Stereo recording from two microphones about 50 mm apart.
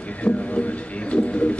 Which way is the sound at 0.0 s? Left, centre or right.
Left.